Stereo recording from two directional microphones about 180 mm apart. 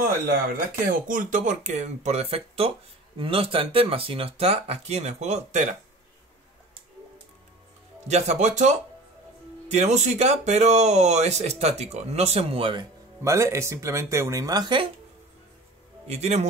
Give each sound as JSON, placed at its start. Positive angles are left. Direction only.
{"t": 0.8, "sound": "speech", "side_deg": -45}
{"t": 8.1, "sound": "speech", "side_deg": -40}
{"t": 13.2, "sound": "speech", "side_deg": -15}
{"t": 16.1, "sound": "speech", "side_deg": -40}